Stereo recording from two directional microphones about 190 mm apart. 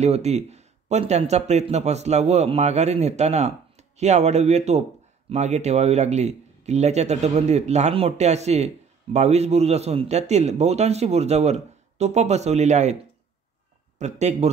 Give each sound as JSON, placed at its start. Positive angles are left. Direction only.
{"t": 0.0, "sound": "a man's voice", "side_deg": -35}
{"t": 13.9, "sound": "a man's voice", "side_deg": -35}